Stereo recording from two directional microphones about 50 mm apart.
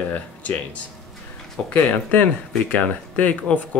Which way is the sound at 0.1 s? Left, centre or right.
Left.